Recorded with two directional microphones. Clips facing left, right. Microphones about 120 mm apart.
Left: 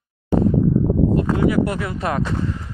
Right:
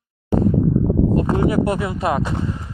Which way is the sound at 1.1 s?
25° right (ahead or behind).